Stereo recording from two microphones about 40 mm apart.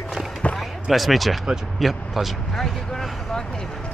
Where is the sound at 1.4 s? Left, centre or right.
Centre.